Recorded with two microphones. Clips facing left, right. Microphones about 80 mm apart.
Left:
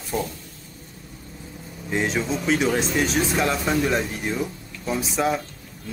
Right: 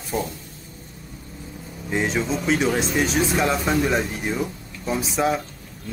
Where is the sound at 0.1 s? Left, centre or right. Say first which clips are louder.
Right 1 dB; centre.